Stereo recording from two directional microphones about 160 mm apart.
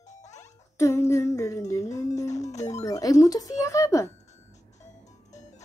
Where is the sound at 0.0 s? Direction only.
45° left (ahead or behind).